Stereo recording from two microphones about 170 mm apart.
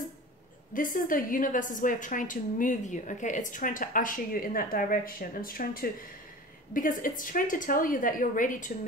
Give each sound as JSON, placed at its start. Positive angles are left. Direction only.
{"t": 0.7, "sound": "a woman's voice", "side_deg": 55}